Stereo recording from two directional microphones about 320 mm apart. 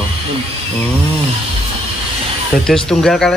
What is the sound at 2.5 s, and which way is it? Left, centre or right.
Speech, centre.